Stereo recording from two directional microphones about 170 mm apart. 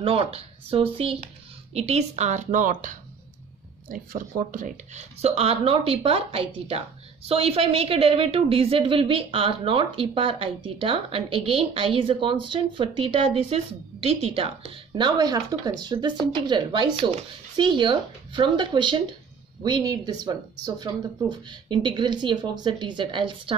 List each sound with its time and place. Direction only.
0.0 s a woman's voice: 35° right (ahead or behind); by 3.0 s 50° right (ahead or behind)
4.1 s a woman's voice: 50° right (ahead or behind); by 23.5 s 30° right (ahead or behind)